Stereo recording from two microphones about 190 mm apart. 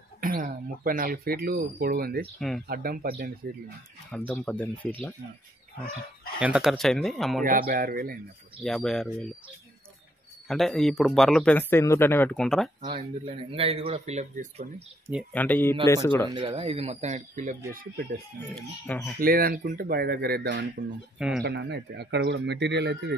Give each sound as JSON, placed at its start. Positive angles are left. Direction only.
{"t": 0.2, "sound": "speech", "side_deg": -45}
{"t": 2.3, "sound": "speech", "side_deg": 0}
{"t": 2.7, "sound": "speech", "side_deg": -50}
{"t": 4.3, "sound": "speech", "side_deg": 5}
{"t": 6.4, "sound": "speech", "side_deg": -5}
{"t": 7.4, "sound": "speech", "side_deg": -50}
{"t": 8.6, "sound": "speech", "side_deg": 0}
{"t": 10.5, "sound": "speech", "side_deg": 0}
{"t": 12.8, "sound": "speech", "side_deg": -30}
{"t": 15.3, "sound": "speech", "side_deg": 10}
{"t": 16.3, "sound": "speech", "side_deg": -25}
{"t": 17.7, "sound": "speech", "side_deg": -55}